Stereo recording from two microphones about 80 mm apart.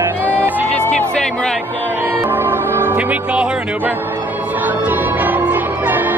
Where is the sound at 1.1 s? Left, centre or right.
Centre.